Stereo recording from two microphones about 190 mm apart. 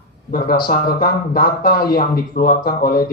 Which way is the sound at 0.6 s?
50° left (ahead or behind).